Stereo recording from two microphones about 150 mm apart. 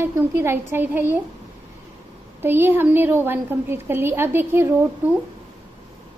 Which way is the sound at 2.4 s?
15° right (ahead or behind).